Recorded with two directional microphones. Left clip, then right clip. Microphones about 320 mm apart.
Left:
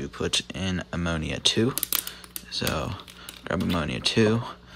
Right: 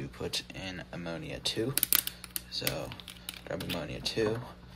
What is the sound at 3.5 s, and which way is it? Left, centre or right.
Speech, left.